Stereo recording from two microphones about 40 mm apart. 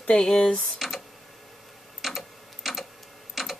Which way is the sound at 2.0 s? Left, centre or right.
Centre.